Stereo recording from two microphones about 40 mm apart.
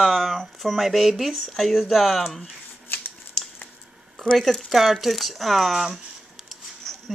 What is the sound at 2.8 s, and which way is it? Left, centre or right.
Shuffling cards, left.